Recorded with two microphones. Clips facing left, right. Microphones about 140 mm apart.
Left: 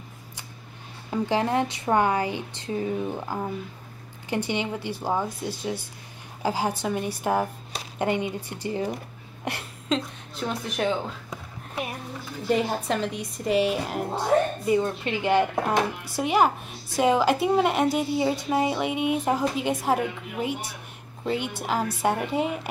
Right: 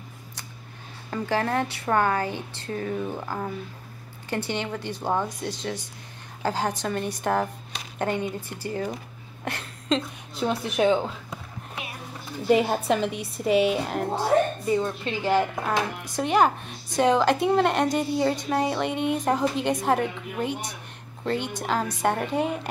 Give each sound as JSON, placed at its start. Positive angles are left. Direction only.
{"t": 1.1, "sound": "a woman's voice", "side_deg": 15}
{"t": 10.4, "sound": "speech", "side_deg": -10}
{"t": 12.4, "sound": "a woman's voice", "side_deg": -5}